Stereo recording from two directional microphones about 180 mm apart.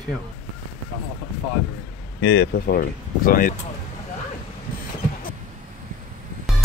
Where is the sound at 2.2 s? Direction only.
65° left (ahead or behind); by 3.5 s 50° left (ahead or behind).